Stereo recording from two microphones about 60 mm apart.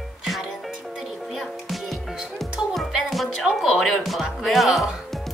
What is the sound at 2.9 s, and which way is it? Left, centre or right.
A woman's voice, centre.